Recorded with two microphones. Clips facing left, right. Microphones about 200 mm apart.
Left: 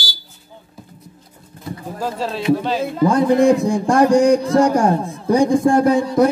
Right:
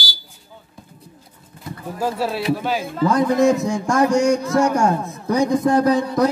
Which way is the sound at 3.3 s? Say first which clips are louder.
Left 3 dB; 55° left (ahead or behind).